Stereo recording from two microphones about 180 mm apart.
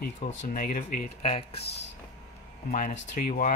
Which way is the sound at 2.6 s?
45° left (ahead or behind).